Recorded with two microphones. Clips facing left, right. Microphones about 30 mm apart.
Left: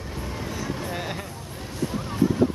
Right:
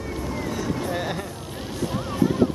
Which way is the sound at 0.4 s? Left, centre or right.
Centre.